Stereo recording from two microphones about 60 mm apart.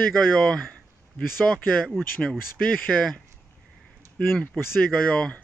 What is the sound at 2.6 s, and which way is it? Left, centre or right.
Speech, centre.